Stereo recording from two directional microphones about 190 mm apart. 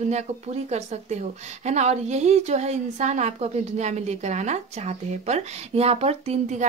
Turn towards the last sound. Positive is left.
turn(degrees=-35)  # may be behind; listen again after turning